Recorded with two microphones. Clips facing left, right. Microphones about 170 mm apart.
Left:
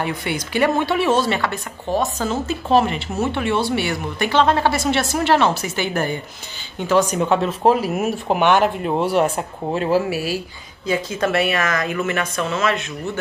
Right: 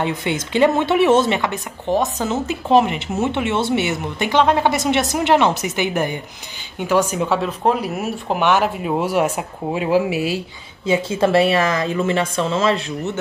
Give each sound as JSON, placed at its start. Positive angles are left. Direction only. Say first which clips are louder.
{"t": 0.0, "sound": "speech", "louder": "right 2 dB", "side_deg": -20}